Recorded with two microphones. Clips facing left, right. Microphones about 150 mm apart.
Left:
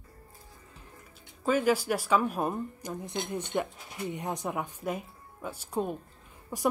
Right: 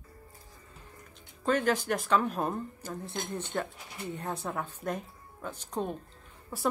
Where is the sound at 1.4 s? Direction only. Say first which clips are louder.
Left 2 dB; 5° left (ahead or behind).